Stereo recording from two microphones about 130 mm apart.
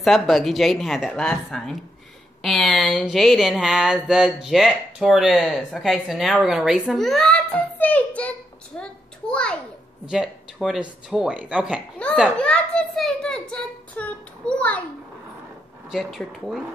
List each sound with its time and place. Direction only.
0.0 s a child's voice: centre (ahead or behind)
10.0 s speech: 5° right (ahead or behind)
12.0 s a child's voice: 10° left (ahead or behind)
15.9 s speech: centre (ahead or behind)